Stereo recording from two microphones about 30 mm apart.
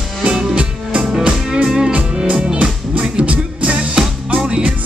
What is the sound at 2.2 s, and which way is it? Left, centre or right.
Music, right.